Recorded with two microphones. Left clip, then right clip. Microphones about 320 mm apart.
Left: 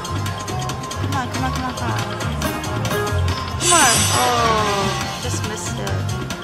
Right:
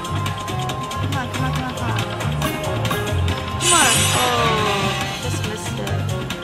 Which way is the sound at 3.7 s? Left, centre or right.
Centre.